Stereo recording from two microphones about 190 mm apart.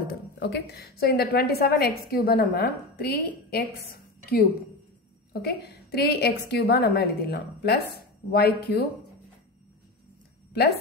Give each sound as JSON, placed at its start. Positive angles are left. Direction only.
{"t": 0.1, "sound": "a woman's voice", "side_deg": 60}